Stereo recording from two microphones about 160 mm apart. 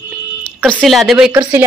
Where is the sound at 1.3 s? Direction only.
15° right (ahead or behind).